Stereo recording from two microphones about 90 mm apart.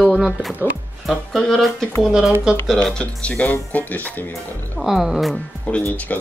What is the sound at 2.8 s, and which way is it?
Speech, 10° left (ahead or behind).